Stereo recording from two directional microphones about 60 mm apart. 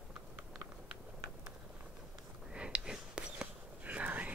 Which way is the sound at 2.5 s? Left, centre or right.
Centre.